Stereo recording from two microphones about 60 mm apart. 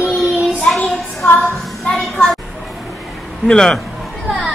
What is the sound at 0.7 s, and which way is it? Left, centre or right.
Child singing, centre.